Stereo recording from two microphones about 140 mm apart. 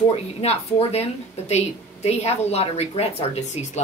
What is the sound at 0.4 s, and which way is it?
Speech, 50° left (ahead or behind).